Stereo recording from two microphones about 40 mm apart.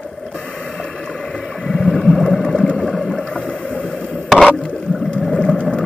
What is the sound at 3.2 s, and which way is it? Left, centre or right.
Boat, left.